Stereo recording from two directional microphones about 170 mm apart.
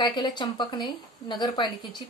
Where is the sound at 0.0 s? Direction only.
25° left (ahead or behind).